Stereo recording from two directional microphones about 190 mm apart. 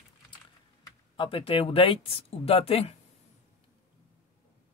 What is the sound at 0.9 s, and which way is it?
Speech, 25° left (ahead or behind).